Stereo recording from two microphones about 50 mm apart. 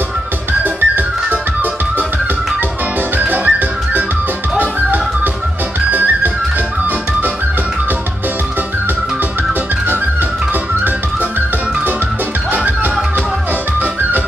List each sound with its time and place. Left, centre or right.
0.7 s music: right
3.2 s music: right